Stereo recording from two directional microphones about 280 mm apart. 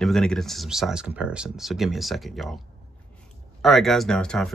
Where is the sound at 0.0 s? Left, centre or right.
Centre.